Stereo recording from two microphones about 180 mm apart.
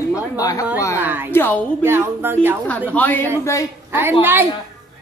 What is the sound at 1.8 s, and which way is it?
Speech, 15° right (ahead or behind).